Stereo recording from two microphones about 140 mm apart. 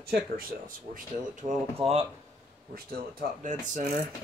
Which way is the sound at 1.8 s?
45° right (ahead or behind).